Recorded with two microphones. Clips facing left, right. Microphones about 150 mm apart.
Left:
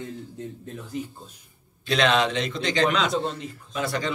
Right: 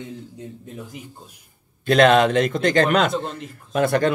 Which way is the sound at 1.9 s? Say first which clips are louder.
Right 7 dB; 50° right (ahead or behind).